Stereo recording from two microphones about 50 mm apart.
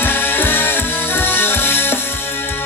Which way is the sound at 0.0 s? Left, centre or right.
Left.